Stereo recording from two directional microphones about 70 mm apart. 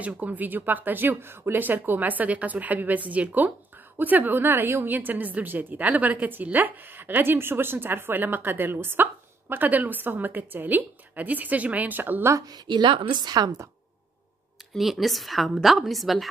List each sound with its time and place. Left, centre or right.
0.0 s a woman's voice: right
12.4 s a woman's voice: right
14.7 s a woman's voice: centre